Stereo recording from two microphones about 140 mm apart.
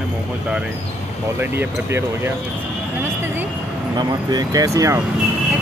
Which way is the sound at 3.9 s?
30° right (ahead or behind).